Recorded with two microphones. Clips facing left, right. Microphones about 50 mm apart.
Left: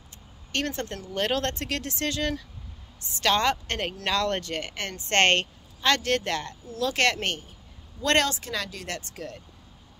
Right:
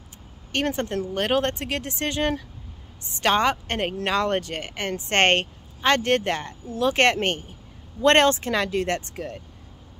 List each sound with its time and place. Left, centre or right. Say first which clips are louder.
0.5 s a woman's voice: right 5 dB; right